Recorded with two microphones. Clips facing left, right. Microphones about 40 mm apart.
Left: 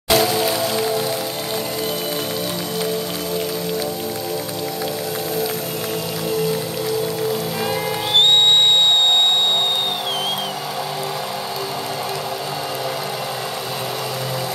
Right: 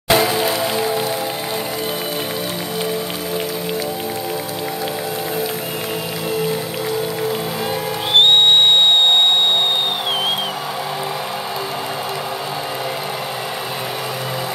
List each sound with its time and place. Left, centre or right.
0.1 s music: right
8.1 s music: right